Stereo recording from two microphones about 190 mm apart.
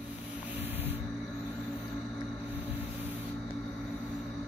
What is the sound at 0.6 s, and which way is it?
Spray, 10° right (ahead or behind).